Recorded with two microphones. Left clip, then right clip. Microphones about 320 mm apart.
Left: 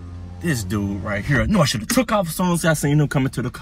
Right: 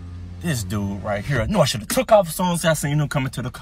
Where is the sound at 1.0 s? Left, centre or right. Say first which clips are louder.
Right 1 dB; right.